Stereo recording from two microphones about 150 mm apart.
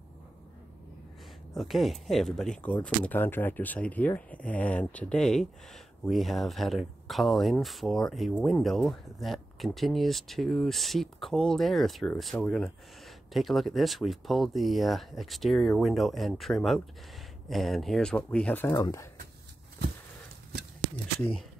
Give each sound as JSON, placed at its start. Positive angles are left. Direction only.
{"t": 1.5, "sound": "speech", "side_deg": 0}